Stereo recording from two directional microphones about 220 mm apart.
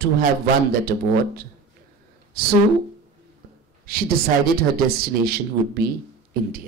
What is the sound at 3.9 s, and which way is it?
Speech, 40° right (ahead or behind).